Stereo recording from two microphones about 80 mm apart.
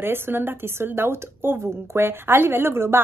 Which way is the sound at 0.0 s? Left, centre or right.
Right.